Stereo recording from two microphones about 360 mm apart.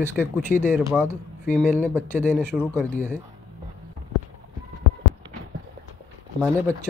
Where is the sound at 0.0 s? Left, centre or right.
Centre.